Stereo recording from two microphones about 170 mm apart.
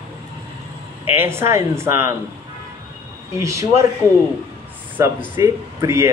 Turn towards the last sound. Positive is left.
turn(degrees=-15)  # may be behind; listen again after turning